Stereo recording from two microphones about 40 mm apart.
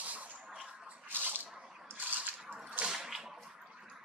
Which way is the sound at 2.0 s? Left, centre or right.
Right.